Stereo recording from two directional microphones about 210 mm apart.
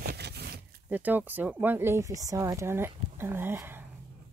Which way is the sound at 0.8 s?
10° right (ahead or behind).